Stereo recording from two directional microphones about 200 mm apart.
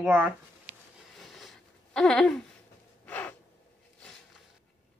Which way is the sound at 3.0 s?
10° left (ahead or behind).